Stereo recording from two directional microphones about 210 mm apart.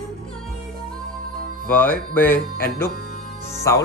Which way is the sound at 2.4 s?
45° left (ahead or behind).